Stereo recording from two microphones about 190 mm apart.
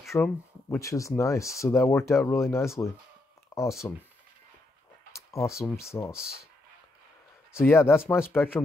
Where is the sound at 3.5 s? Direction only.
20° left (ahead or behind).